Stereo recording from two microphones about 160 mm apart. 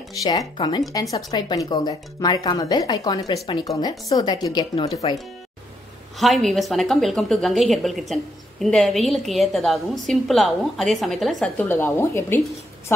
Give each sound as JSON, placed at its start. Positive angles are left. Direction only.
{"t": 0.2, "sound": "speech", "side_deg": 20}
{"t": 6.1, "sound": "a woman's voice", "side_deg": 0}
{"t": 11.5, "sound": "speech", "side_deg": 15}